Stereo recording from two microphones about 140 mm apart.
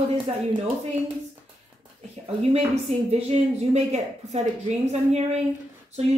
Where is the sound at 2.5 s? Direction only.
50° right (ahead or behind).